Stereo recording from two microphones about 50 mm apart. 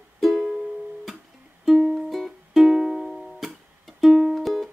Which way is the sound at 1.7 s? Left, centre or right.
Centre.